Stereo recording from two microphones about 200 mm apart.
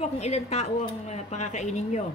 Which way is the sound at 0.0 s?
35° left (ahead or behind).